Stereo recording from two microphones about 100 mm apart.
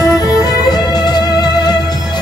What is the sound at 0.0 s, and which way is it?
Music, 40° left (ahead or behind).